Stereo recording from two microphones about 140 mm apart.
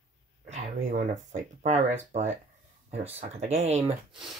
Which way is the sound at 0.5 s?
60° right (ahead or behind).